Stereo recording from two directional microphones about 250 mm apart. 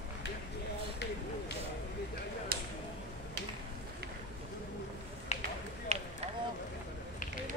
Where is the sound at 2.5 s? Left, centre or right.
Right.